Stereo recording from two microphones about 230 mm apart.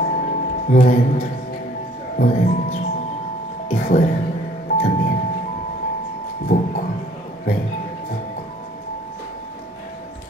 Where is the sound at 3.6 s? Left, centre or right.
Left.